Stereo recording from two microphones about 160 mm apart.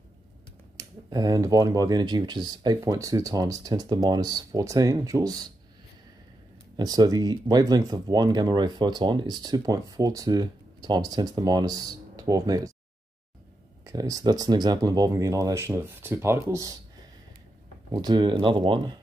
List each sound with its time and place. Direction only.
0.7 s speech: 25° right (ahead or behind)
6.8 s speech: 25° right (ahead or behind)
13.8 s speech: 20° right (ahead or behind)
17.9 s speech: 25° right (ahead or behind)